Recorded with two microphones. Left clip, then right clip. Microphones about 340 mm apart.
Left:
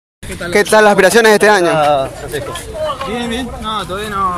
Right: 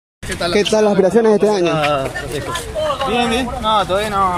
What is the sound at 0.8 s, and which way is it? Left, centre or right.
Speech, left.